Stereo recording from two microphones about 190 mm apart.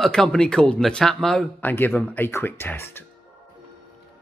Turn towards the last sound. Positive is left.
turn(degrees=10)  # may be behind; listen again after turning